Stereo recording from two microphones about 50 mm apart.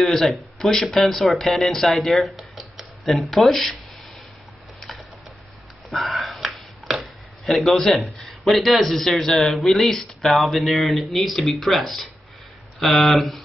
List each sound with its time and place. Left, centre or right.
0.0 s speech: centre
4.7 s a sound: centre
5.9 s speech: centre